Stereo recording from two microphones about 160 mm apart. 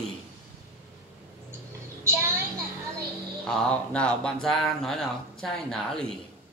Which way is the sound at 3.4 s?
5° left (ahead or behind).